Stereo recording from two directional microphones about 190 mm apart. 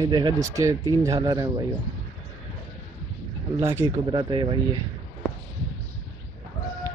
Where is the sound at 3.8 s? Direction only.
25° right (ahead or behind).